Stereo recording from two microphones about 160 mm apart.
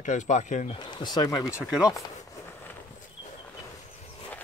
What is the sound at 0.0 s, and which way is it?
Speech, 50° left (ahead or behind).